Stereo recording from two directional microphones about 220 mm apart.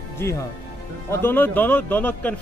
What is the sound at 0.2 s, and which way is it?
A man's voice, 15° left (ahead or behind).